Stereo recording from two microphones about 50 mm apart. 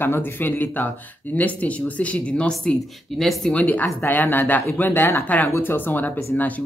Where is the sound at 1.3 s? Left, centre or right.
Left.